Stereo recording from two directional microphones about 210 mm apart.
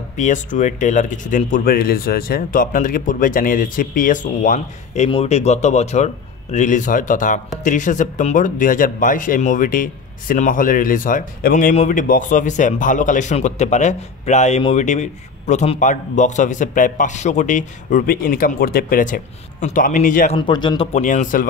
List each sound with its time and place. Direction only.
0.2 s speech: 35° left (ahead or behind)
20.3 s speech: 20° left (ahead or behind); by 21.5 s 40° left (ahead or behind)